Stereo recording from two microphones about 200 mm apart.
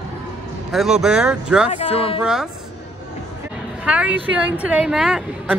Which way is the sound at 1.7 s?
30° left (ahead or behind).